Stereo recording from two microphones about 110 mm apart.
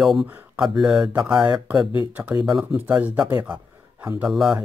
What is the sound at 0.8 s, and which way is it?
Speech, 5° right (ahead or behind).